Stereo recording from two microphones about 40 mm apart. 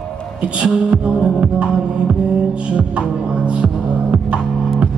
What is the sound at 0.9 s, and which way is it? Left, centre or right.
Music, right.